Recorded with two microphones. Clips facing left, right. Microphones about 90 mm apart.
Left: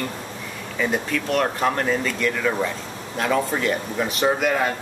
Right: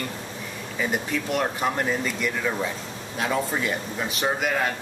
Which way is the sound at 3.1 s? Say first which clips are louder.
Left 4 dB; 50° left (ahead or behind).